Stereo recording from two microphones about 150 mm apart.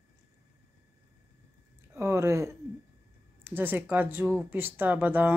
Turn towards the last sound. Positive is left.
turn(degrees=-10)  # may be behind; listen again after turning